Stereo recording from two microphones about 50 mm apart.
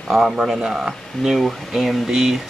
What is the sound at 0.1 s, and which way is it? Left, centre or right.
Speech, centre.